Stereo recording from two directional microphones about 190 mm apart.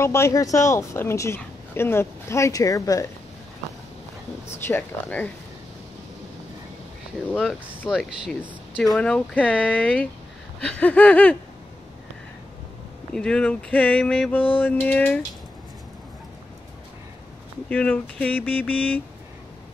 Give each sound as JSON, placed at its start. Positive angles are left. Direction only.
{"t": 0.0, "sound": "speech", "side_deg": 15}
{"t": 4.6, "sound": "speech", "side_deg": 10}
{"t": 7.9, "sound": "speech", "side_deg": 0}
{"t": 13.1, "sound": "speech", "side_deg": 5}
{"t": 17.6, "sound": "speech", "side_deg": 5}